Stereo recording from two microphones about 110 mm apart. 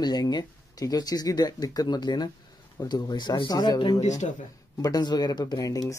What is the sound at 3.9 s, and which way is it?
Speech, 90° left.